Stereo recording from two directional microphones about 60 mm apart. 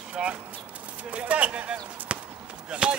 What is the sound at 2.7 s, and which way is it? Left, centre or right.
Speech, centre.